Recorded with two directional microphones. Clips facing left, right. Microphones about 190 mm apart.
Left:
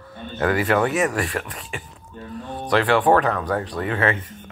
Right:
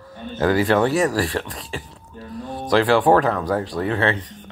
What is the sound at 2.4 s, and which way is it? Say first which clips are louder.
Speech: right 2 dB; 40° right (ahead or behind).